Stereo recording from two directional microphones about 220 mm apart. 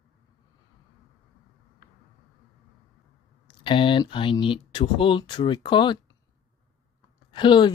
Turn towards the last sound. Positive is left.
turn(degrees=20)  # may be behind; listen again after turning